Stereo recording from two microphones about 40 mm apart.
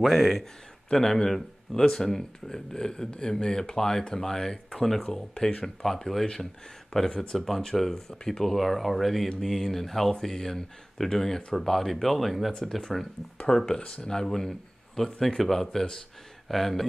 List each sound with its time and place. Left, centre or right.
0.0 s speech: centre
0.9 s speech: centre
6.9 s speech: left
7.3 s speech: centre
13.5 s speech: centre